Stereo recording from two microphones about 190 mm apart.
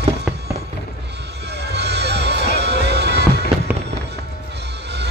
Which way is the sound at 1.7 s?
60° right (ahead or behind).